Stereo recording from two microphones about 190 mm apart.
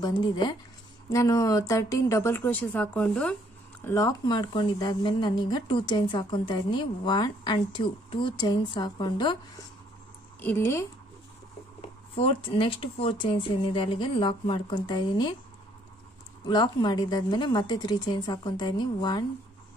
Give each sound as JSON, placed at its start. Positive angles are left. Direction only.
{"t": 0.0, "sound": "speech", "side_deg": 25}
{"t": 3.8, "sound": "speech", "side_deg": 15}
{"t": 10.4, "sound": "speech", "side_deg": 10}
{"t": 11.8, "sound": "speech", "side_deg": 30}
{"t": 16.4, "sound": "speech", "side_deg": 20}